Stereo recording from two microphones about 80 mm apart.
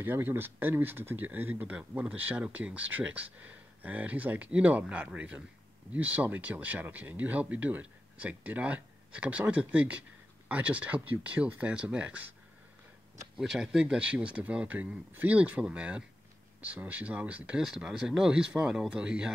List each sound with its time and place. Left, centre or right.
0.0 s speech: right
13.4 s speech: centre
17.6 s speech: centre